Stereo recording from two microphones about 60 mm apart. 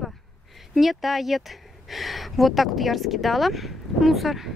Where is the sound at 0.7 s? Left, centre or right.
Centre.